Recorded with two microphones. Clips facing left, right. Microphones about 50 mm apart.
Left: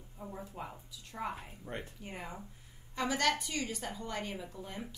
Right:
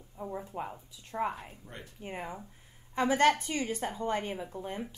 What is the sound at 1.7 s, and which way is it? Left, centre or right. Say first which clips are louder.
Speech: left 5 dB; left.